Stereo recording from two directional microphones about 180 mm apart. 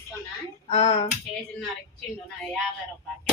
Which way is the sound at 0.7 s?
35° left (ahead or behind).